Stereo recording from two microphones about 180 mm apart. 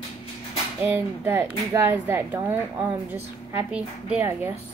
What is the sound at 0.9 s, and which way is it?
Speech, 10° right (ahead or behind).